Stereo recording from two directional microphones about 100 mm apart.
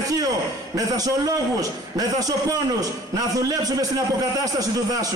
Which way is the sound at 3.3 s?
40° right (ahead or behind).